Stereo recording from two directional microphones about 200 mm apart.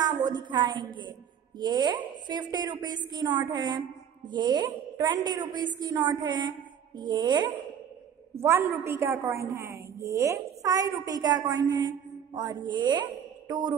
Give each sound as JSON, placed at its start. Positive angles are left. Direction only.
{"t": 0.0, "sound": "a woman's voice", "side_deg": -20}